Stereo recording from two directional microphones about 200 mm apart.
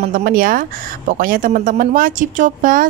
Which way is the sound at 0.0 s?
45° right (ahead or behind).